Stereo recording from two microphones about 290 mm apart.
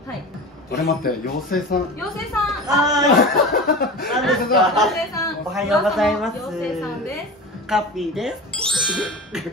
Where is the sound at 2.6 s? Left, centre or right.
Centre.